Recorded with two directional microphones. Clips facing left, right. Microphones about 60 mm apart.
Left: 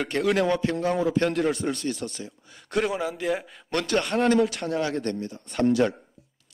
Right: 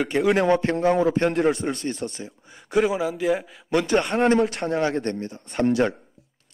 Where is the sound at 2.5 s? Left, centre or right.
Centre.